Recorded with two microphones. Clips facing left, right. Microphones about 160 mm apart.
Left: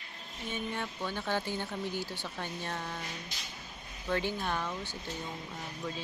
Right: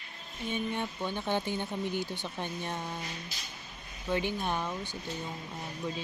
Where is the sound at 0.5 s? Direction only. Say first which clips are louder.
Right 3 dB; 20° right (ahead or behind).